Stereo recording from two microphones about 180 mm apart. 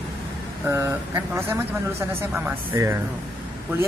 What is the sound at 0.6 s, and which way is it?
Speech, 10° right (ahead or behind).